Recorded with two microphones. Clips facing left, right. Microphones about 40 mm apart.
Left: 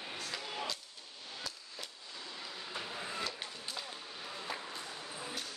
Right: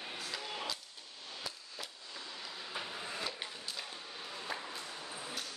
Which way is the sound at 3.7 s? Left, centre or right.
Centre.